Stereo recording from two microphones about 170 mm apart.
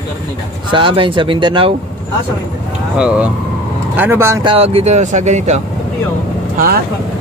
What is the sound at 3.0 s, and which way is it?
Speech, 5° right (ahead or behind).